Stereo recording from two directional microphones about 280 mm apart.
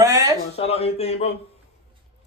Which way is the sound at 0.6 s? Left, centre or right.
Left.